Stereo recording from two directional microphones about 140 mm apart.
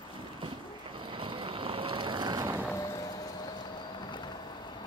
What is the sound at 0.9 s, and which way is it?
Vehicle, 35° right (ahead or behind).